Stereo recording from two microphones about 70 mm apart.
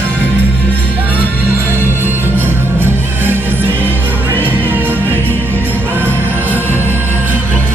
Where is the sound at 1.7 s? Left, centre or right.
Right.